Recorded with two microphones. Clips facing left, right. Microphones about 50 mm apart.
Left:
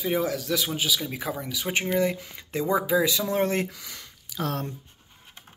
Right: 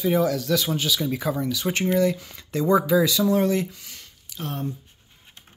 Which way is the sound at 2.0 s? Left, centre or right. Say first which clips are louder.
Right 3 dB; left.